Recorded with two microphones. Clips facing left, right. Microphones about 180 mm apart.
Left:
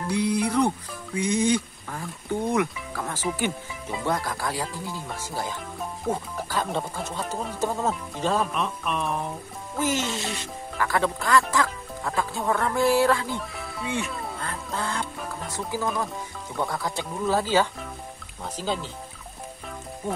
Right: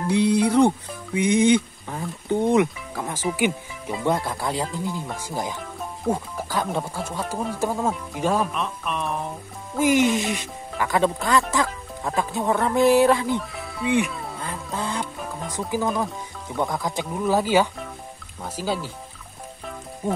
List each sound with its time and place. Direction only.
0.1 s speech: 25° right (ahead or behind); by 8.5 s 10° right (ahead or behind)
8.5 s speech: centre (ahead or behind)
9.8 s speech: 15° right (ahead or behind)
13.4 s speech: centre (ahead or behind)
13.8 s speech: 15° right (ahead or behind)
14.1 s dog: centre (ahead or behind)
14.4 s dog: 15° right (ahead or behind)
15.5 s speech: 15° right (ahead or behind)